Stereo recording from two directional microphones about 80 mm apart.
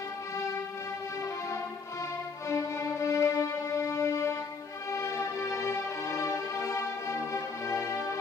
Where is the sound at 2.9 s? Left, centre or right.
Left.